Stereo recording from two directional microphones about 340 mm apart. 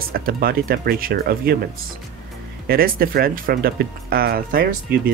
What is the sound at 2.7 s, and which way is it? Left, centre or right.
Speech, right.